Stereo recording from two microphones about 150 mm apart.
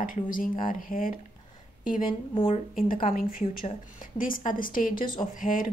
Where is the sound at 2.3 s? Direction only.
35° left (ahead or behind).